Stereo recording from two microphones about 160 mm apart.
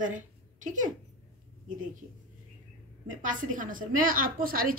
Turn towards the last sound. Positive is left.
turn(degrees=-65)  # may be behind; listen again after turning